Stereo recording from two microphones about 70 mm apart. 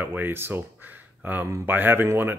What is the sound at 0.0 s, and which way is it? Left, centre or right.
Speech, right.